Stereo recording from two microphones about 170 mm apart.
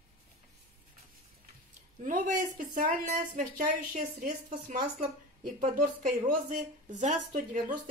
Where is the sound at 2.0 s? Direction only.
50° right (ahead or behind).